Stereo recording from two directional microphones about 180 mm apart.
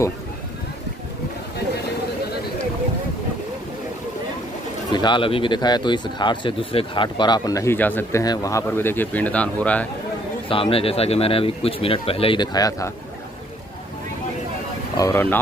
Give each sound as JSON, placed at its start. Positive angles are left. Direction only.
{"t": 4.9, "sound": "speech", "side_deg": 25}
{"t": 10.5, "sound": "speech", "side_deg": 30}
{"t": 15.0, "sound": "speech", "side_deg": 15}